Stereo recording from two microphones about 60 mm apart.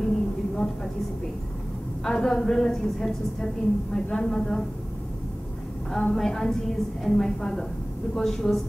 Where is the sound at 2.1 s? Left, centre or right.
Centre.